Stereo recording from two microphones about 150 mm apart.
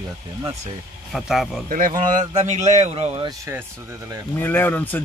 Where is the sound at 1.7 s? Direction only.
60° right (ahead or behind); by 3.3 s 45° right (ahead or behind).